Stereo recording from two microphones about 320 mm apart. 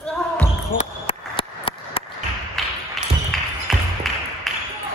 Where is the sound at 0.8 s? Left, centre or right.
Centre.